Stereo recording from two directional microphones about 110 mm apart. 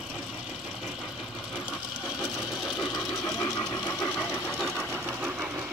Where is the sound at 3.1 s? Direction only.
25° left (ahead or behind).